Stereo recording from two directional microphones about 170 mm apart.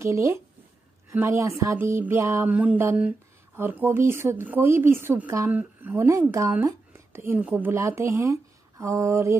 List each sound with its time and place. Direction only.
0.0 s speech: 15° right (ahead or behind)